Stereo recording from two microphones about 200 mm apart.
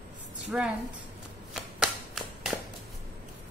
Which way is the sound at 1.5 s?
5° right (ahead or behind).